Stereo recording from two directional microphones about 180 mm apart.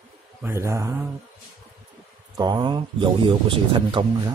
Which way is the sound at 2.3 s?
25° right (ahead or behind).